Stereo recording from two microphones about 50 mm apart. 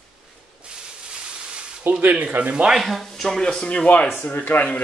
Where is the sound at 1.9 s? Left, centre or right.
Right.